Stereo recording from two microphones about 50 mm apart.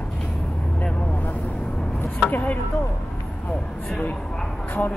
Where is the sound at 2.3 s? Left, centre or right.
Left.